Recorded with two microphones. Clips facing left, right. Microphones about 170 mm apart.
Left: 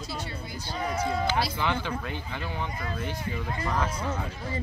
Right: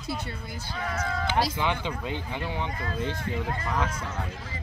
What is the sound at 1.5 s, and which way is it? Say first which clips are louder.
Speech: even; 15° right (ahead or behind).